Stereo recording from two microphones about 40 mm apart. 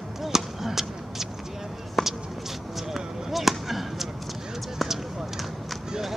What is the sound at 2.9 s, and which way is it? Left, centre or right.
Basketball bounce, centre.